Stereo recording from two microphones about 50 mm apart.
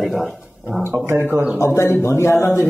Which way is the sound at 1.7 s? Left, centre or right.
Left.